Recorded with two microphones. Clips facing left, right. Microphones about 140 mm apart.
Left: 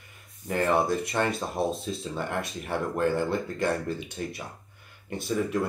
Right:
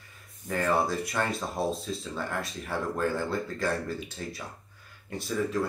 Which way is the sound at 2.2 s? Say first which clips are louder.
Left 2 dB; 25° left (ahead or behind).